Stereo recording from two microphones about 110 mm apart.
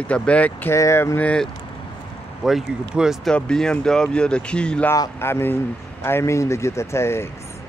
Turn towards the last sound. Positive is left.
turn(degrees=25)  # may be behind; listen again after turning